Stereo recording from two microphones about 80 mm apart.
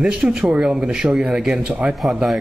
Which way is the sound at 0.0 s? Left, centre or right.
Centre.